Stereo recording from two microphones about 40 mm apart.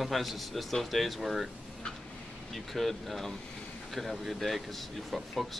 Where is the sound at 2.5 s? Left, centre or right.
Centre.